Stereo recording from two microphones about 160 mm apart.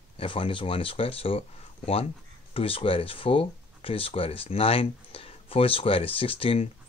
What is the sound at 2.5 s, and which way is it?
Speech, 35° left (ahead or behind).